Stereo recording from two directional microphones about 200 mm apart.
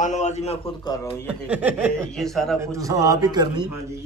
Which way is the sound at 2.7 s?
15° right (ahead or behind).